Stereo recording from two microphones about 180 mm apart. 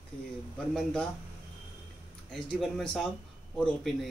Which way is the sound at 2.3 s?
Centre (ahead or behind).